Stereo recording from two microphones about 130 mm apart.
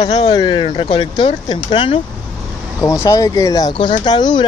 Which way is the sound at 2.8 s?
25° left (ahead or behind).